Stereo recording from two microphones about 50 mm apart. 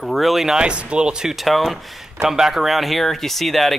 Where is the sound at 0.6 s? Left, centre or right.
Right.